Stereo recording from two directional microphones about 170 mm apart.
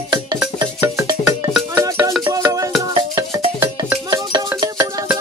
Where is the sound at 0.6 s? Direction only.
20° right (ahead or behind).